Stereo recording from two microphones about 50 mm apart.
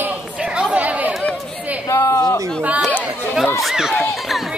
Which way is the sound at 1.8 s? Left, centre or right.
Left.